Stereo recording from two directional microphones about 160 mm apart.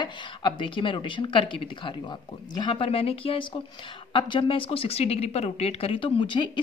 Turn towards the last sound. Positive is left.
turn(degrees=30)  # may be behind; listen again after turning